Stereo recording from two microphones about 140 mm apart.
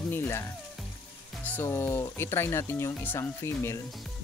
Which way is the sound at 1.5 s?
15° left (ahead or behind).